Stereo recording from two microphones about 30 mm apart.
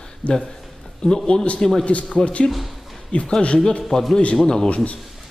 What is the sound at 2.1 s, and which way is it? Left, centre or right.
Speech, left.